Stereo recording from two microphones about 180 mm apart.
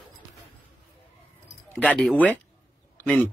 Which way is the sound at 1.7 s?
5° left (ahead or behind).